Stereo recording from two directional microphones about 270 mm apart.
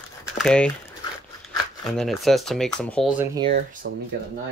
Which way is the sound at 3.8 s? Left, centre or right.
Right.